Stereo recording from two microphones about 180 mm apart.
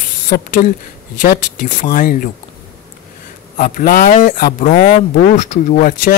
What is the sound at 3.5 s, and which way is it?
Speech, 50° left (ahead or behind).